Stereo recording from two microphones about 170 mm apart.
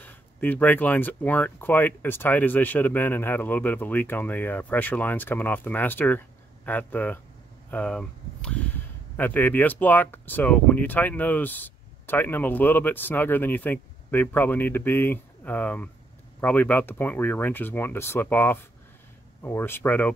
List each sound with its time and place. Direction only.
0.0 s speech: 10° left (ahead or behind)